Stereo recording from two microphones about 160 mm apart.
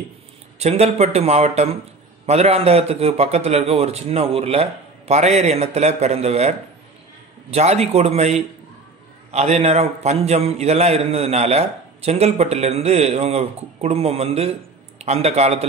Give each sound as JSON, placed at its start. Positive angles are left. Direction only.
{"t": 0.6, "sound": "a man's voice", "side_deg": -40}
{"t": 7.5, "sound": "a man's voice", "side_deg": -40}